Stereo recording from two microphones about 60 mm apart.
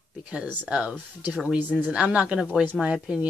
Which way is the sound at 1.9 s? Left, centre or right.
Centre.